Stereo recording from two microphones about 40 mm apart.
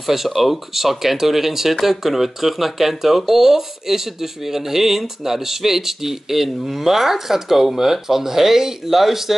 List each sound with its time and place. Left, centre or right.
0.0 s speech: centre